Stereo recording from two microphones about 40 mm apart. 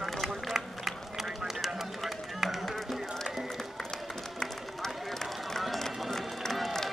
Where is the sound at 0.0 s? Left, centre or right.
Centre.